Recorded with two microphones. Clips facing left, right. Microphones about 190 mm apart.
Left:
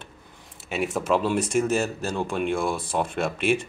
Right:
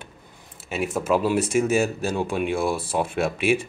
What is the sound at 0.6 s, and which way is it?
Speech, centre (ahead or behind).